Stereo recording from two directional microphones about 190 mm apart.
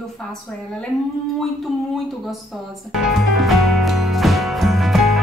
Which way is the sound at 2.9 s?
Centre (ahead or behind).